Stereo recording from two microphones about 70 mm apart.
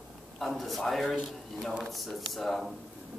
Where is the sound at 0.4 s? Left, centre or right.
Centre.